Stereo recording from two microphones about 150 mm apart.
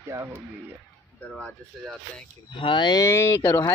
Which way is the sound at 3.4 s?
30° left (ahead or behind).